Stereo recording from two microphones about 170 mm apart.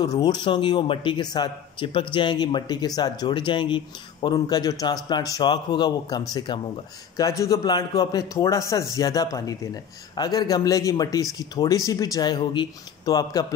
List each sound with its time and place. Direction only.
0.0 s speech: 25° left (ahead or behind)